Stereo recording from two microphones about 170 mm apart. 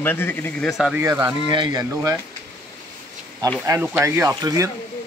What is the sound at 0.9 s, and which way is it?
Speech, 10° right (ahead or behind).